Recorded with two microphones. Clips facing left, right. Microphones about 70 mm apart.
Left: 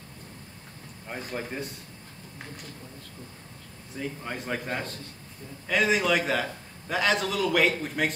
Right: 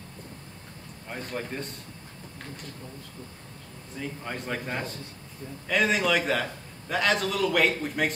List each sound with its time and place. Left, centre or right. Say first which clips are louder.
1.0 s a man's voice: even; centre
3.9 s a man's voice: left 1 dB; centre